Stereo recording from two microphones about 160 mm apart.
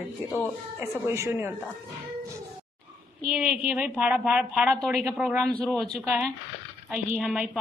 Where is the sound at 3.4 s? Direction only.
5° right (ahead or behind).